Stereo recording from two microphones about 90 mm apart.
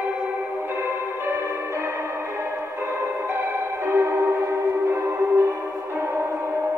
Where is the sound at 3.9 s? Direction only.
30° right (ahead or behind).